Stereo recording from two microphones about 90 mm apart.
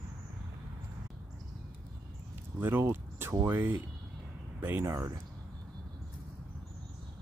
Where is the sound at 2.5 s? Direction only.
25° right (ahead or behind).